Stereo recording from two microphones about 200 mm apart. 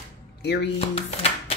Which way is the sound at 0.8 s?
30° left (ahead or behind).